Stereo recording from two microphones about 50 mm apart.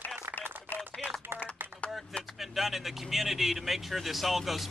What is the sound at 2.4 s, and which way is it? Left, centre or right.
Speech, centre.